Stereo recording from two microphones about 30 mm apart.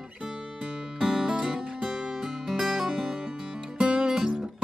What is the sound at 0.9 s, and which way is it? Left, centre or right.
Music, right.